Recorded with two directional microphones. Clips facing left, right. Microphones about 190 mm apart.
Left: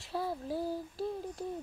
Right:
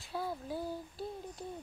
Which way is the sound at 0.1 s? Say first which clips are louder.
Left 3 dB; 35° left (ahead or behind).